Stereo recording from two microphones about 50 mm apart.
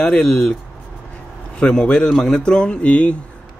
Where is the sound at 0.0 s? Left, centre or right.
Left.